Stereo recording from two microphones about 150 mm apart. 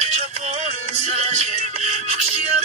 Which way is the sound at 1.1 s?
45° right (ahead or behind).